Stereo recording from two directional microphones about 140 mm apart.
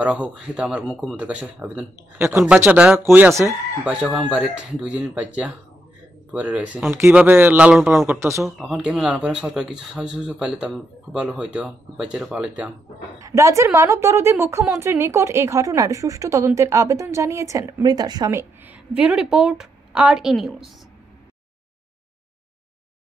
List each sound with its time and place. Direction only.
0.0 s speech: 5° right (ahead or behind)
3.8 s speech: 5° right (ahead or behind)
8.1 s a woman's voice: 20° right (ahead or behind)
8.5 s speech: 5° right (ahead or behind)
13.2 s a woman's voice: 20° right (ahead or behind)
18.9 s speech: 5° right (ahead or behind)